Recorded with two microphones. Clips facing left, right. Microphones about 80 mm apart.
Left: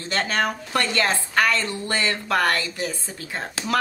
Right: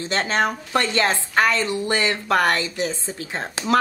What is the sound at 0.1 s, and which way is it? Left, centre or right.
A woman's voice, right.